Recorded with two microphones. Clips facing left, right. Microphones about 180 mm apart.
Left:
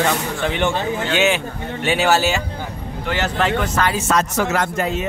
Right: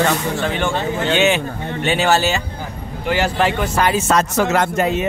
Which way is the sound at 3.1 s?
10° right (ahead or behind).